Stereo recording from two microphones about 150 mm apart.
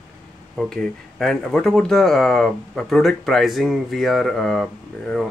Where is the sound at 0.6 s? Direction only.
5° left (ahead or behind).